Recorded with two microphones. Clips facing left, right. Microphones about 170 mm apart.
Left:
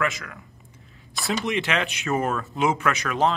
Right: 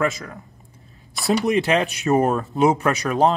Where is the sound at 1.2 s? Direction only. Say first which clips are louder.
Right 7 dB; 40° right (ahead or behind).